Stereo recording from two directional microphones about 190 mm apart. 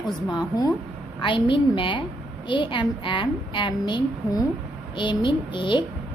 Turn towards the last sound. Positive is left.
turn(degrees=25)  # may be behind; listen again after turning